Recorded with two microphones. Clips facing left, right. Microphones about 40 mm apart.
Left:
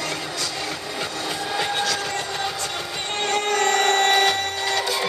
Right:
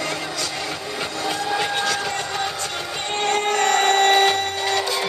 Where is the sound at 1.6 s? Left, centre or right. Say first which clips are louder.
Right 1 dB; right.